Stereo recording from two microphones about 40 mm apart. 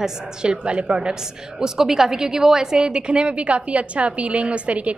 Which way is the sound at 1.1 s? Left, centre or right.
Centre.